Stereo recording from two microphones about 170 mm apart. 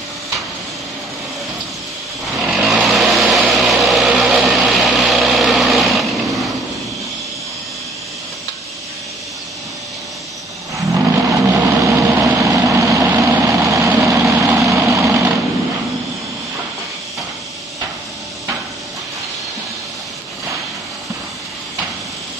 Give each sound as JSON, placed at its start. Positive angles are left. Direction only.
{"t": 2.3, "sound": "vehicle", "side_deg": 0}
{"t": 10.9, "sound": "vehicle", "side_deg": -15}